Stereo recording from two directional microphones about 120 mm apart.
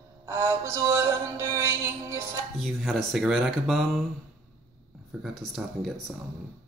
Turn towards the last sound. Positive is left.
turn(degrees=0)  # may be behind; listen again after turning